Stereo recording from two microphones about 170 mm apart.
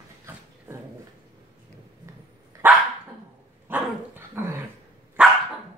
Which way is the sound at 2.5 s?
20° right (ahead or behind).